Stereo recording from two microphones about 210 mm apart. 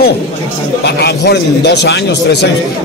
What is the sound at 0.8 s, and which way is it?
A man's voice, 55° left (ahead or behind).